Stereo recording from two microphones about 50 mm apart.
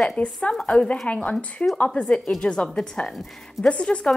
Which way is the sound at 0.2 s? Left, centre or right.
Left.